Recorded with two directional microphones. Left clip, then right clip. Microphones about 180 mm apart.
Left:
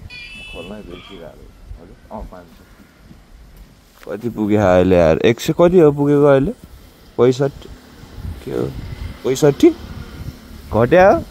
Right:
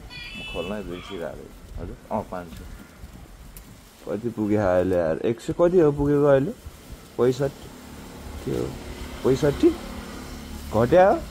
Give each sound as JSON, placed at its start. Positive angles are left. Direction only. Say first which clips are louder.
{"t": 0.6, "sound": "speech", "louder": "right 2 dB", "side_deg": -35}
{"t": 4.1, "sound": "speech", "louder": "left 6 dB", "side_deg": 45}
{"t": 9.2, "sound": "speech", "louder": "left 7 dB", "side_deg": 55}
{"t": 10.7, "sound": "speech", "louder": "left 5 dB", "side_deg": 40}